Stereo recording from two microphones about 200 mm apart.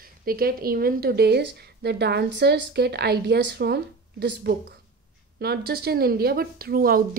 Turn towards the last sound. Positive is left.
turn(degrees=-45)  # may be behind; listen again after turning